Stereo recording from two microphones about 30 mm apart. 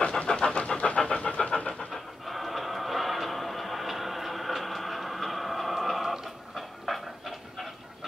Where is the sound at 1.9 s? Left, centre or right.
Centre.